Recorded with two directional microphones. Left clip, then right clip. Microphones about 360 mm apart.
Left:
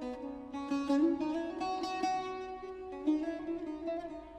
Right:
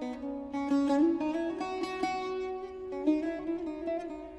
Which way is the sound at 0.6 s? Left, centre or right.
Right.